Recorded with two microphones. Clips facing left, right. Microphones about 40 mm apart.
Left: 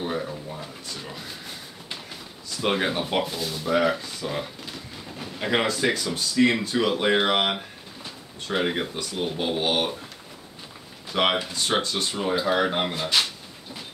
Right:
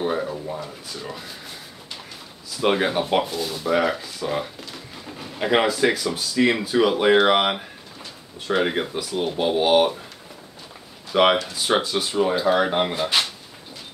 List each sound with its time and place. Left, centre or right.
0.0 s a sound: centre
0.6 s speech: centre
2.5 s speech: centre
11.1 s speech: centre